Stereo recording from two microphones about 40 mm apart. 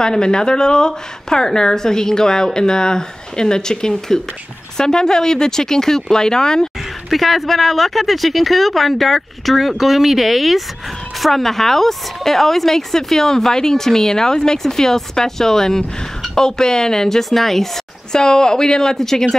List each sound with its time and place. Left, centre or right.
0.0 s a woman's voice: centre
7.1 s a woman's voice: centre
18.1 s a woman's voice: centre